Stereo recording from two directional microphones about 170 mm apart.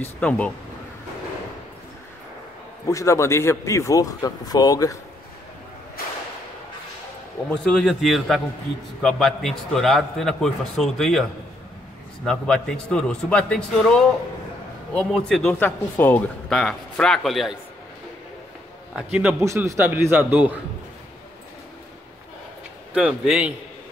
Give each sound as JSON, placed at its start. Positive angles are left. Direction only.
{"t": 0.0, "sound": "speech", "side_deg": 10}
{"t": 2.9, "sound": "a man's voice", "side_deg": 20}
{"t": 7.4, "sound": "a man's voice", "side_deg": 5}
{"t": 12.3, "sound": "a man's voice", "side_deg": 5}
{"t": 19.4, "sound": "a man's voice", "side_deg": -15}
{"t": 22.9, "sound": "a man's voice", "side_deg": -5}